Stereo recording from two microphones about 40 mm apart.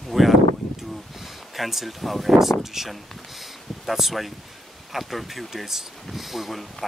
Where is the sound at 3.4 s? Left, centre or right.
Centre.